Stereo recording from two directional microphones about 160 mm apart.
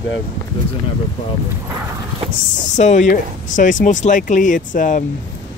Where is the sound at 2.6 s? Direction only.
50° left (ahead or behind).